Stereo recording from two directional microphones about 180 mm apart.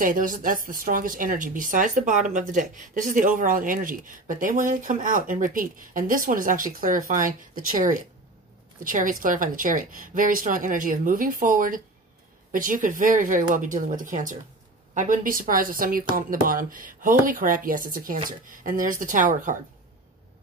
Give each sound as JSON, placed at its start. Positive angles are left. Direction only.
{"t": 0.0, "sound": "a woman's voice", "side_deg": -50}